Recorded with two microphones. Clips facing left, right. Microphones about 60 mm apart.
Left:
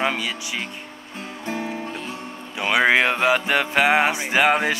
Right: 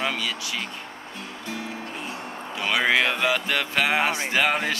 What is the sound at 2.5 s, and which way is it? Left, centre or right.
Speech, left.